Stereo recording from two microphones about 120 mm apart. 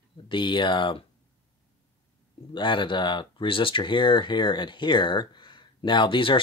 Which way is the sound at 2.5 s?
40° left (ahead or behind).